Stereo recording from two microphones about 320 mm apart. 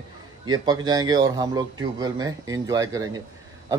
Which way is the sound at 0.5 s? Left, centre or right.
Centre.